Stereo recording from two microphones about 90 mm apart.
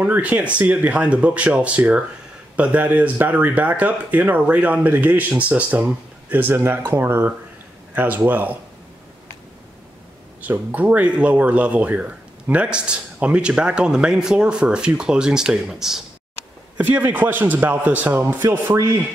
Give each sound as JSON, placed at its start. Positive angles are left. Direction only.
{"t": 0.0, "sound": "speech", "side_deg": -15}
{"t": 10.4, "sound": "speech", "side_deg": -15}
{"t": 16.7, "sound": "speech", "side_deg": -20}